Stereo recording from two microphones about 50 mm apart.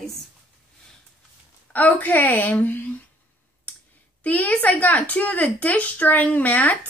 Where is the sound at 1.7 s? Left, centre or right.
Left.